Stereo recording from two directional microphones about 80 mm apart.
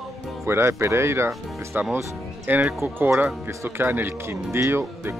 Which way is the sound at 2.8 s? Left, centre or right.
Right.